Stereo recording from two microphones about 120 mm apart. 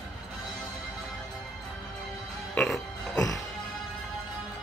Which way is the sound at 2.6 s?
5° left (ahead or behind).